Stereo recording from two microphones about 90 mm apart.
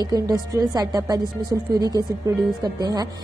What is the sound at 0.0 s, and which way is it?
A woman's voice, 45° right (ahead or behind).